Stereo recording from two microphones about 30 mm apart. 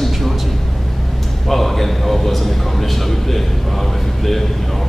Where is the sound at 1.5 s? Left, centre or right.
Centre.